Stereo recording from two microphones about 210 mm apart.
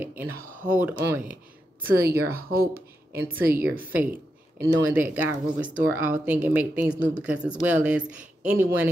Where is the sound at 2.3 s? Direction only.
45° right (ahead or behind).